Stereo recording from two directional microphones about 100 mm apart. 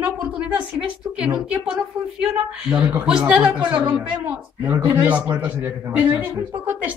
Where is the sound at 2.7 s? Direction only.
15° right (ahead or behind).